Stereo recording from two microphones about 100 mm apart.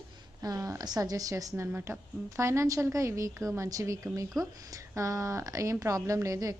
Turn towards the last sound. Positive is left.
turn(degrees=-35)  # may be behind; listen again after turning